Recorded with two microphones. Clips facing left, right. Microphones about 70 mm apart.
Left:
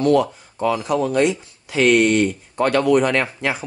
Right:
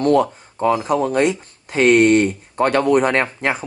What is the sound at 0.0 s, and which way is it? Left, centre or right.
Speech, right.